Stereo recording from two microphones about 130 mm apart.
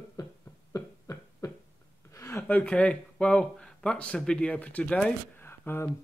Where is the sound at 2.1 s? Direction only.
20° left (ahead or behind).